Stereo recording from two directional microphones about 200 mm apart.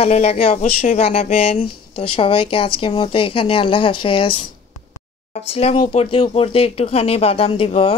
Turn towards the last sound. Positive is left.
turn(degrees=30)  # may be behind; listen again after turning